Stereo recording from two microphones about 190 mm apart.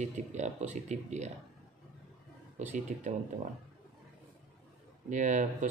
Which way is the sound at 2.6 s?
40° right (ahead or behind).